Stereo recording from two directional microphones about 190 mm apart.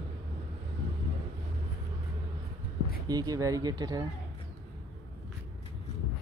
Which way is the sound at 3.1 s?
20° right (ahead or behind).